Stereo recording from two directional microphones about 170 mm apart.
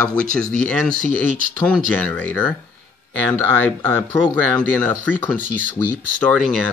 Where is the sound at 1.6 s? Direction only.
10° left (ahead or behind).